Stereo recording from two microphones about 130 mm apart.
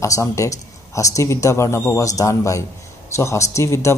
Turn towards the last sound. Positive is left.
turn(degrees=20)  # may be behind; listen again after turning